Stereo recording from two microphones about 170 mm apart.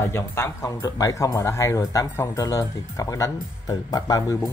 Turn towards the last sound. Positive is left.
turn(degrees=20)  # may be behind; listen again after turning